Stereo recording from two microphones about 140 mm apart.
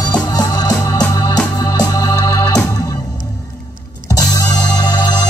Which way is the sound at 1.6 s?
25° left (ahead or behind).